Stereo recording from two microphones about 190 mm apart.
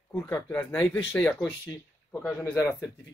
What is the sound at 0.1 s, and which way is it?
Speech, 5° left (ahead or behind).